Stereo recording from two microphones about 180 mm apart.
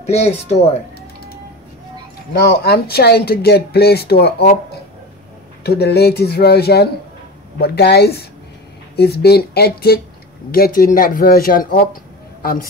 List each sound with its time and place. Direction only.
0.0 s speech: 35° left (ahead or behind)
2.4 s speech: 60° left (ahead or behind)
5.6 s speech: 65° left (ahead or behind)